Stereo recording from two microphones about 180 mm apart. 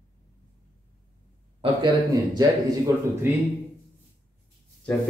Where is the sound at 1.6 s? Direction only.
20° right (ahead or behind).